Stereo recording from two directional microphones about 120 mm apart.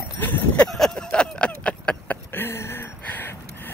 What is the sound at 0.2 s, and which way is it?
Speech, 15° left (ahead or behind).